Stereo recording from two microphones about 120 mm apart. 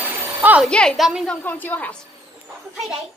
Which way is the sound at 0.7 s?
5° left (ahead or behind).